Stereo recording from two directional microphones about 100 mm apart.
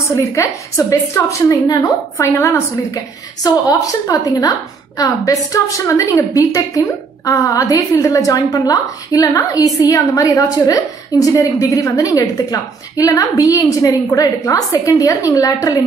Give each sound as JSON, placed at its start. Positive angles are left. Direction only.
{"t": 0.3, "sound": "a woman's voice", "side_deg": 30}